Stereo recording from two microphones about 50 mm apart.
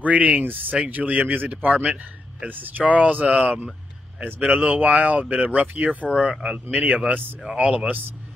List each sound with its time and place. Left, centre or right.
0.0 s speech: right
6.3 s speech: centre
6.6 s speech: right